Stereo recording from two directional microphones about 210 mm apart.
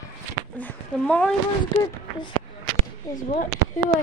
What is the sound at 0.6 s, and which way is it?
Speech, 5° left (ahead or behind).